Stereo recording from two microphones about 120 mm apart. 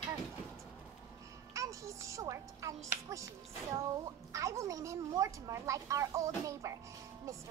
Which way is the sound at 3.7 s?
25° right (ahead or behind).